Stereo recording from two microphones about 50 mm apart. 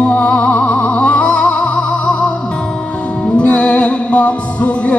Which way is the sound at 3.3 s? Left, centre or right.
Left.